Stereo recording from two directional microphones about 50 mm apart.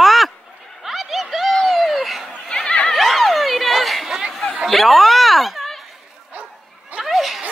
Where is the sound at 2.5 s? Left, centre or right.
Centre.